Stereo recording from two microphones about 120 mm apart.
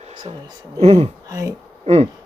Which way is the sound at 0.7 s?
60° right (ahead or behind).